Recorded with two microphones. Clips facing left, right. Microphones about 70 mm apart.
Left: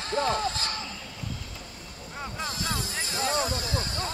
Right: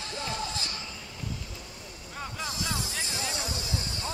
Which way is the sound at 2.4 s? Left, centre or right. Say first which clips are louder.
Left 2 dB; left.